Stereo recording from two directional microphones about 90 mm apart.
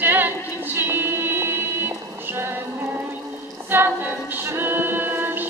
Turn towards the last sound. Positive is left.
turn(degrees=-20)  # may be behind; listen again after turning